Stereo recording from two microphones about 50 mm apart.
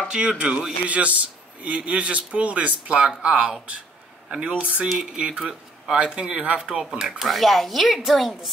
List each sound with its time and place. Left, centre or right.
0.4 s a man's voice: right
6.7 s speech: centre
7.1 s speech: centre